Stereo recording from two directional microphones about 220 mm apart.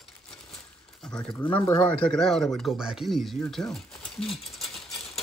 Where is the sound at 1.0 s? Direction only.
5° left (ahead or behind).